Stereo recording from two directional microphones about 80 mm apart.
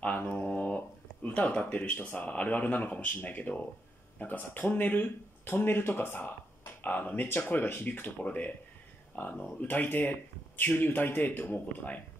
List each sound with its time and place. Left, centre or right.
0.0 s speech: centre